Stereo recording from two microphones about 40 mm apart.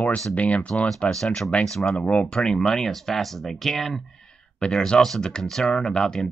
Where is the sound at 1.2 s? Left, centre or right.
Centre.